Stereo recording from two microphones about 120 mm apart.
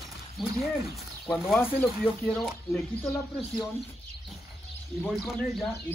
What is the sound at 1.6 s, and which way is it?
Speech, 15° left (ahead or behind).